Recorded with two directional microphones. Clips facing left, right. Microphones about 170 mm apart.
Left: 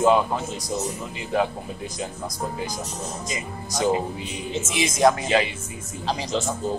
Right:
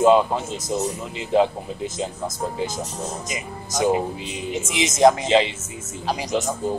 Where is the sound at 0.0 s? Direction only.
20° right (ahead or behind).